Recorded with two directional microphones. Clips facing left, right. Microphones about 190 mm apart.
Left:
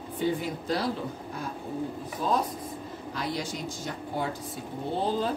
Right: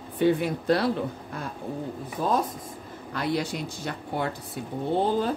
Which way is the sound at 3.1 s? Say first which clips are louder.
Right 5 dB; 60° right (ahead or behind).